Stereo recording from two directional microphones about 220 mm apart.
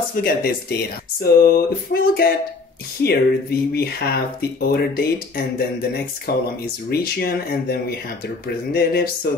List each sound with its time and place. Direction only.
0.1 s speech: 45° left (ahead or behind)